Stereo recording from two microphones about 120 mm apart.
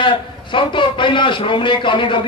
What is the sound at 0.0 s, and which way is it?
A man's voice, 45° left (ahead or behind).